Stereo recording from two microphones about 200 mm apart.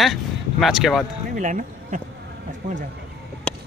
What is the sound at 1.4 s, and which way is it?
Speech, 40° right (ahead or behind).